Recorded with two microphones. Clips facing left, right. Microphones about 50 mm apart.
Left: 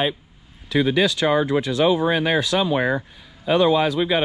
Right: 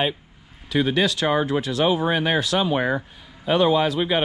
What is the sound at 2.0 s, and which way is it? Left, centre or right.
Speech, left.